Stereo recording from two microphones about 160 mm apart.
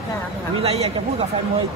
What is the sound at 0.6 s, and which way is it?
Speech, 40° right (ahead or behind).